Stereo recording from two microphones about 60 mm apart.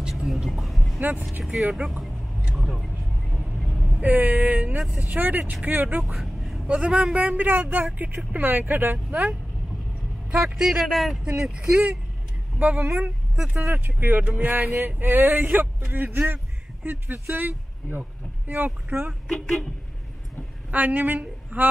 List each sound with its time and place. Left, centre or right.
0.1 s vehicle: centre
1.5 s speech: centre
2.5 s vehicle: centre
4.0 s speech: right
6.0 s vehicle: centre
6.7 s speech: centre
7.2 s speech: right
10.3 s speech: centre
11.3 s speech: centre
12.5 s speech: right
19.2 s speech: centre
20.7 s a woman's voice: right